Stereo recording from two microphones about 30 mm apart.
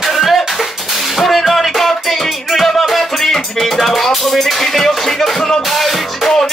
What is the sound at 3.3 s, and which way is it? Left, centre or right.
Music, centre.